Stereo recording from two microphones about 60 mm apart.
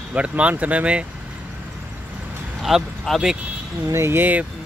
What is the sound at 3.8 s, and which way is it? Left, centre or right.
Speech, right.